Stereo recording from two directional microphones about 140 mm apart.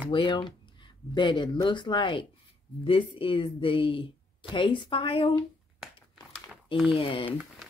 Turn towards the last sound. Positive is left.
turn(degrees=40)  # may be behind; listen again after turning